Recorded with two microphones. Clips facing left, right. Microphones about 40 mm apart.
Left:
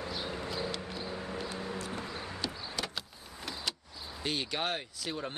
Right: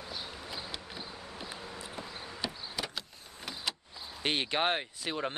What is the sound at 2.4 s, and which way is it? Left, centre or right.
Power windows, centre.